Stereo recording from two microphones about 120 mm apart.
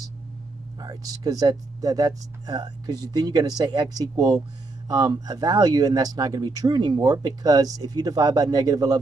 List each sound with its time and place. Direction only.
0.7 s speech: 30° right (ahead or behind)